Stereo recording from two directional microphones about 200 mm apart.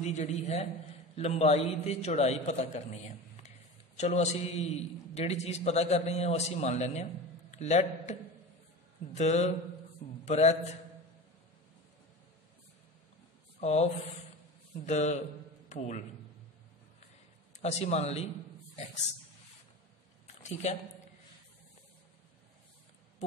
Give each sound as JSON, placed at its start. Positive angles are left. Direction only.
{"t": 0.0, "sound": "a man's voice", "side_deg": 35}
{"t": 3.4, "sound": "a sound", "side_deg": 35}
{"t": 5.1, "sound": "a man's voice", "side_deg": 30}
{"t": 13.6, "sound": "speech", "side_deg": 30}
{"t": 14.9, "sound": "a man's voice", "side_deg": 35}
{"t": 17.6, "sound": "a man's voice", "side_deg": 35}
{"t": 20.6, "sound": "a man's voice", "side_deg": 35}